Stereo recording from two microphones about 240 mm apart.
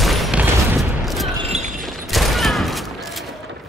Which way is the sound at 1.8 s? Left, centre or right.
Centre.